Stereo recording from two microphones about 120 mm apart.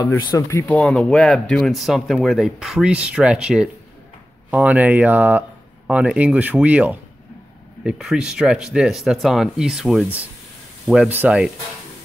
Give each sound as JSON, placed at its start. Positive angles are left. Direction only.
{"t": 0.2, "sound": "speech", "side_deg": 30}
{"t": 0.7, "sound": "speech", "side_deg": 5}
{"t": 11.1, "sound": "speech", "side_deg": -15}